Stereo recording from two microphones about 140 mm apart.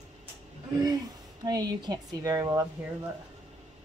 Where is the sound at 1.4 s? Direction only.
30° right (ahead or behind).